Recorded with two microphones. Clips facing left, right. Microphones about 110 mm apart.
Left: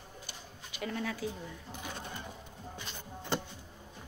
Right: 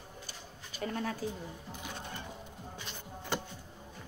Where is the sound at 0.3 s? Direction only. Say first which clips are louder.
Even; 40° right (ahead or behind).